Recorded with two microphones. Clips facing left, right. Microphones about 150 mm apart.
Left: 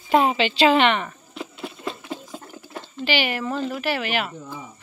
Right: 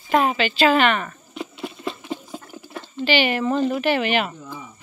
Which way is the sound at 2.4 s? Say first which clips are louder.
Right 1 dB; 30° left (ahead or behind).